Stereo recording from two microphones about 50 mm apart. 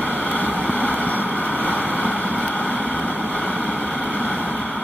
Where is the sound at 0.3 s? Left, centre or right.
Left.